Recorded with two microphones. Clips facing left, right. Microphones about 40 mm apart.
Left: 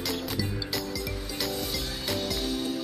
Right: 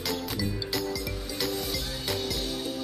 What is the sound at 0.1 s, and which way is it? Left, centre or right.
Music, centre.